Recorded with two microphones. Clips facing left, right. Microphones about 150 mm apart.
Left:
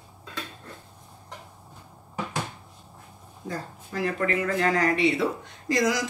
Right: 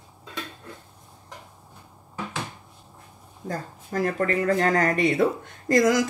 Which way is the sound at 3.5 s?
45° right (ahead or behind).